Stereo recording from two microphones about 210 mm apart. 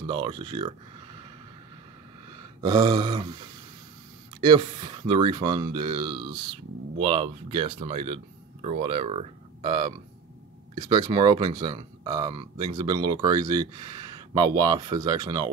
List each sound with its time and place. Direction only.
0.0 s speech: 25° right (ahead or behind)
2.6 s speech: 20° right (ahead or behind)
4.4 s speech: 20° right (ahead or behind)